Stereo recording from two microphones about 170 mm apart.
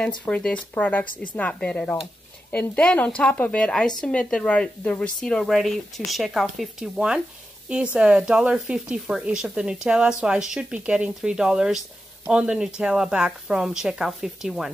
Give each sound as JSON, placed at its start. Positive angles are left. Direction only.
{"t": 0.2, "sound": "a woman's voice", "side_deg": 5}